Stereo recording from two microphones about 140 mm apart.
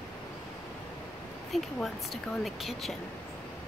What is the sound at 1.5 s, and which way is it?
Speech, centre (ahead or behind).